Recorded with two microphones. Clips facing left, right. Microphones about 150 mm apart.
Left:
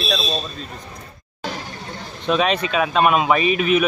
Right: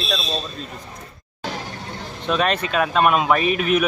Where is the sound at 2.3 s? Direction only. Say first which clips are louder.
Left 2 dB; centre (ahead or behind).